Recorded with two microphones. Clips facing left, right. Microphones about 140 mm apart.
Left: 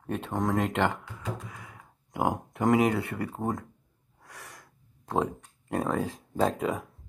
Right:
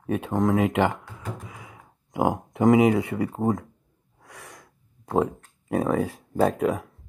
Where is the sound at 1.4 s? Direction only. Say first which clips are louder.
Right 2 dB; 15° right (ahead or behind).